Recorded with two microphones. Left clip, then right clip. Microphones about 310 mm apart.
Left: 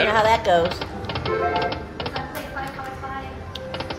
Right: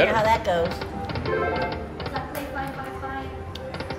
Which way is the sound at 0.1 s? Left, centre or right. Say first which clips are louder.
Left 4 dB; left.